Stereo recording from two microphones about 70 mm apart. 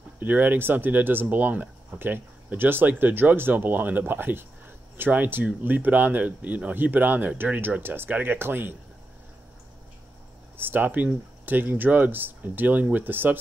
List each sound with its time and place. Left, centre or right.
0.2 s speech: right
10.6 s speech: right